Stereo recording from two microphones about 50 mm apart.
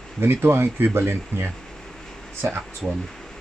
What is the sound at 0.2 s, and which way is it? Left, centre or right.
Speech, right.